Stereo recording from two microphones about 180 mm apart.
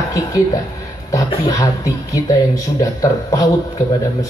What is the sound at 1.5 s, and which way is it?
A man's voice, 20° left (ahead or behind).